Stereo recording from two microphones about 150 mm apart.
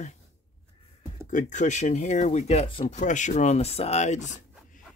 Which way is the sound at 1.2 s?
55° left (ahead or behind).